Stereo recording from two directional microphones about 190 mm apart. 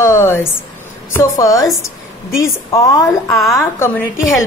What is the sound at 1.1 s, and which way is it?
A woman's voice, 15° left (ahead or behind).